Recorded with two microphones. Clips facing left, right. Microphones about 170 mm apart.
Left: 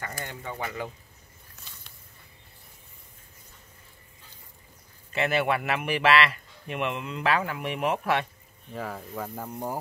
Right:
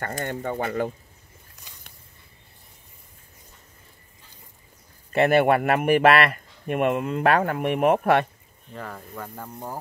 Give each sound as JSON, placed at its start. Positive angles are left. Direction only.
{"t": 0.2, "sound": "speech", "side_deg": -55}
{"t": 1.7, "sound": "a sound", "side_deg": -15}
{"t": 5.1, "sound": "speech", "side_deg": -50}
{"t": 8.7, "sound": "speech", "side_deg": 5}